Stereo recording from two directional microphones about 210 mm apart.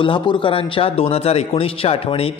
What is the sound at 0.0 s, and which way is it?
A man's voice, 25° left (ahead or behind).